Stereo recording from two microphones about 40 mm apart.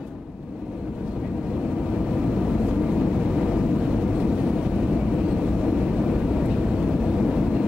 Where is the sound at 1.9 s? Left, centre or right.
Centre.